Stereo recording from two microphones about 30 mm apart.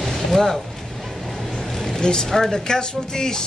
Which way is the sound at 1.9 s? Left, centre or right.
Left.